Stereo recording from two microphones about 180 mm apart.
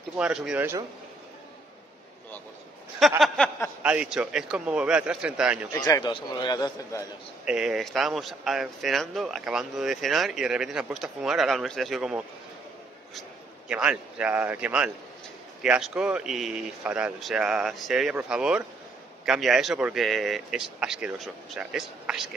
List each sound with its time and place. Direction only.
0.2 s a man's voice: 5° right (ahead or behind)
3.0 s speech: centre (ahead or behind)
5.7 s a man's voice: 20° left (ahead or behind)
7.4 s speech: 5° right (ahead or behind)
13.7 s a man's voice: 5° right (ahead or behind)